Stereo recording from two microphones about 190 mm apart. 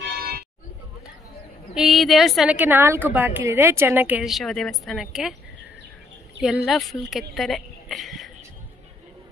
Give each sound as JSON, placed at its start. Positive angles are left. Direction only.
{"t": 0.0, "sound": "church bell", "side_deg": -55}
{"t": 1.8, "sound": "a woman's voice", "side_deg": 0}
{"t": 6.4, "sound": "a woman's voice", "side_deg": 0}